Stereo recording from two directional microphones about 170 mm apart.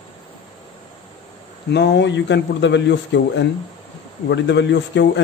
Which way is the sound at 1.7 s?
90° left.